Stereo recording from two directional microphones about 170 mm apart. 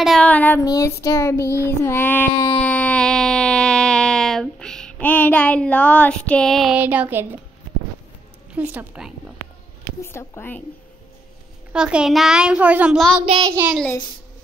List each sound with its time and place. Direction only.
0.0 s child singing: 5° left (ahead or behind)
2.6 s a sound: 10° left (ahead or behind); by 7.2 s 10° right (ahead or behind)
8.5 s a woman's voice: 10° right (ahead or behind)
10.0 s child singing: 15° left (ahead or behind)
11.7 s a child's voice: 5° right (ahead or behind)
13.2 s child singing: 25° right (ahead or behind)
13.7 s a child's voice: centre (ahead or behind)